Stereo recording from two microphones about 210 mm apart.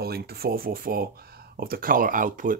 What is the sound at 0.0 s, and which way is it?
Speech, 45° right (ahead or behind).